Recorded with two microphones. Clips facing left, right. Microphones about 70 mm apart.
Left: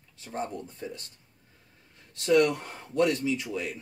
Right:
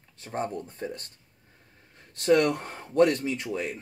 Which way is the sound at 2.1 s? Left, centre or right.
Right.